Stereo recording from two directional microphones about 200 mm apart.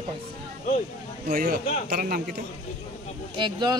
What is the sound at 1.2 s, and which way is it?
A man's voice, 45° right (ahead or behind).